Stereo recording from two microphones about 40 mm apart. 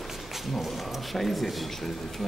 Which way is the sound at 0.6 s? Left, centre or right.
Centre.